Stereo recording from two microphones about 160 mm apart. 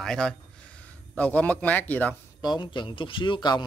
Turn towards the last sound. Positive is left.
turn(degrees=30)  # may be behind; listen again after turning